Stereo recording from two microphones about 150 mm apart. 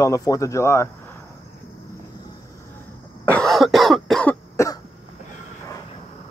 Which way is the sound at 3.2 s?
5° left (ahead or behind).